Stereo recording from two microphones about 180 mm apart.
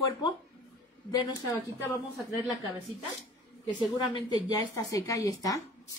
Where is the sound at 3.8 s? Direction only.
25° left (ahead or behind).